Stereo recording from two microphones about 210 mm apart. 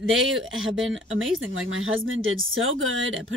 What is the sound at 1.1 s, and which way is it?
Speech, 70° right (ahead or behind).